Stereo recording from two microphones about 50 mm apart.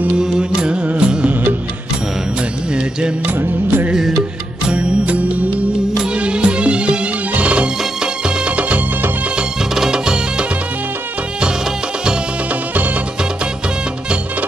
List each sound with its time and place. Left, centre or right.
0.2 s music: centre
0.8 s music: right
3.3 s music: right
3.9 s music: centre
4.6 s music: right
9.8 s music: centre